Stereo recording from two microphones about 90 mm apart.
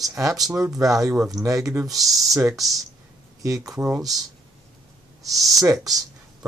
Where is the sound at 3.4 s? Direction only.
40° right (ahead or behind).